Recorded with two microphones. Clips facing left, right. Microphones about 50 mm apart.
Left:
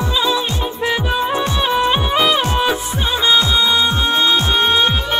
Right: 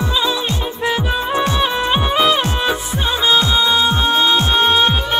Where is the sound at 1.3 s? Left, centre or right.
Right.